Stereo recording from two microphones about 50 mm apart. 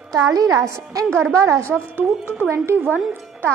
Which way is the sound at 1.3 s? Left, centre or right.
Right.